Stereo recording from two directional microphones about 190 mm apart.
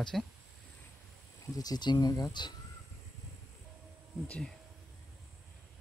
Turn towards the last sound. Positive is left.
turn(degrees=5)  # may be behind; listen again after turning